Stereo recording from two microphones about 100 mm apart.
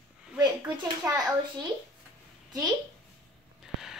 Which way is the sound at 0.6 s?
30° right (ahead or behind).